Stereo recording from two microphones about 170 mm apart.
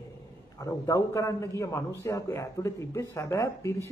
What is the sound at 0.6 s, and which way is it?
A man's voice, 20° left (ahead or behind).